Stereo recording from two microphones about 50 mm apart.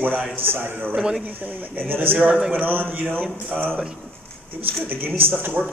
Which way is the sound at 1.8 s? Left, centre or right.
Right.